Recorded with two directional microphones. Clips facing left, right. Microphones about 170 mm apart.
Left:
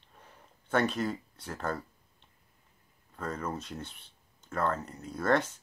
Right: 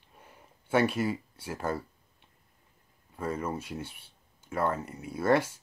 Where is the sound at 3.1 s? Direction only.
10° right (ahead or behind).